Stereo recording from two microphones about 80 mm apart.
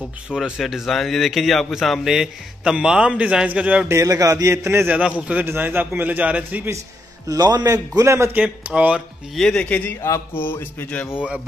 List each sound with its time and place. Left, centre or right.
0.3 s a man's voice: centre
3.9 s a man's voice: right
4.8 s a man's voice: centre
5.5 s a man's voice: right
7.2 s a man's voice: right
8.4 s a man's voice: centre
9.3 s speech: centre
9.7 s speech: centre
10.0 s mantra: left
10.4 s speech: left